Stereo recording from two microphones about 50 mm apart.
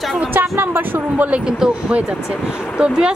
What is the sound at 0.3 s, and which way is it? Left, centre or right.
A woman's voice, right.